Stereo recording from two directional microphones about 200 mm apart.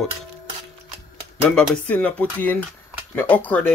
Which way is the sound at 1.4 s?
5° left (ahead or behind).